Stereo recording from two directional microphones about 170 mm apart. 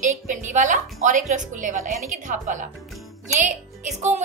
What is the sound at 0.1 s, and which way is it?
A woman's voice, 45° right (ahead or behind).